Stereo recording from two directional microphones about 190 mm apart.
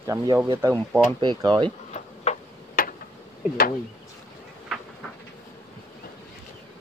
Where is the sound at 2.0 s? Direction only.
40° left (ahead or behind).